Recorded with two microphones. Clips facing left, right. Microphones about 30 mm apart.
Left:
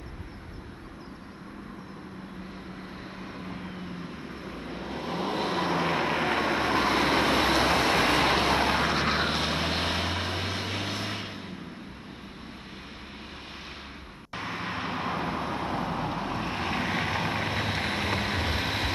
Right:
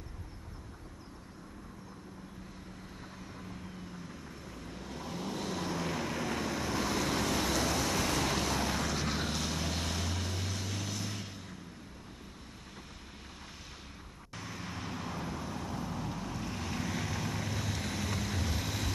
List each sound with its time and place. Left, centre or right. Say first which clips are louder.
3.3 s vehicle: left 7 dB; left
14.3 s vehicle: left 10 dB; left